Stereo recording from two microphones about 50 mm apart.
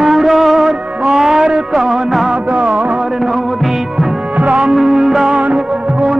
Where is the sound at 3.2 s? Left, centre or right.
Centre.